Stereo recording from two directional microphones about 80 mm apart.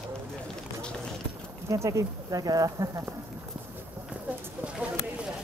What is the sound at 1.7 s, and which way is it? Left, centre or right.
Speech, right.